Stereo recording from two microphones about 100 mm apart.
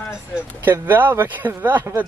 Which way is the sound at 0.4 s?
20° right (ahead or behind).